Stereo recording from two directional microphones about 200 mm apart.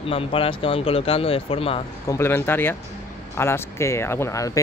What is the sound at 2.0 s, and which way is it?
Speech, 10° left (ahead or behind).